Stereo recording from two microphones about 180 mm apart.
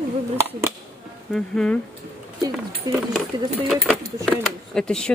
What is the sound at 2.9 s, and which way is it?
Speech, 20° right (ahead or behind).